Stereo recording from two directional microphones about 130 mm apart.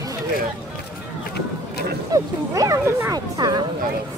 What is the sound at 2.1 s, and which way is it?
Speech, 25° right (ahead or behind).